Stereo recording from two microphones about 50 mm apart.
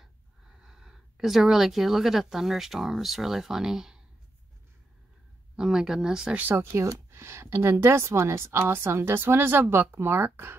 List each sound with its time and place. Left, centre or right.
0.6 s speech: centre
5.6 s speech: centre
6.5 s a woman's voice: right
6.8 s a woman's voice: right